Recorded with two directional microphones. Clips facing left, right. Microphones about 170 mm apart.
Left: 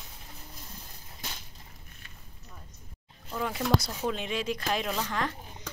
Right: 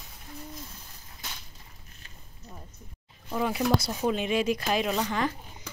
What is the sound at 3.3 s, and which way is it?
Speech, 15° right (ahead or behind).